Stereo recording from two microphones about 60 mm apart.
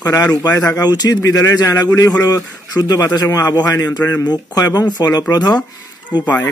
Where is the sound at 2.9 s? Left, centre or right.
Left.